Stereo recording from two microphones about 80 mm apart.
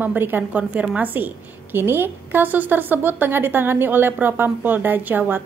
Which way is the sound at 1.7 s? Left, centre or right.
Right.